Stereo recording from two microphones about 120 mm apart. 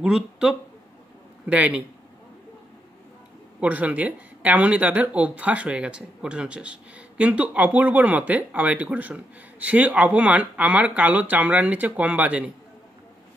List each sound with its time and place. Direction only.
0.0 s a man's voice: 5° right (ahead or behind)
3.6 s speech: 15° right (ahead or behind)